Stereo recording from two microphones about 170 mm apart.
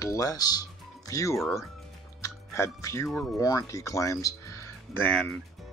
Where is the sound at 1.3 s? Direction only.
Centre (ahead or behind).